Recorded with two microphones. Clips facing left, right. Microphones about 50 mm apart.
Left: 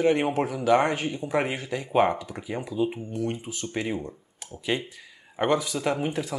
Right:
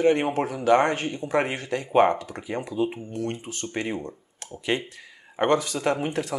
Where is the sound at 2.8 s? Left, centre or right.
Centre.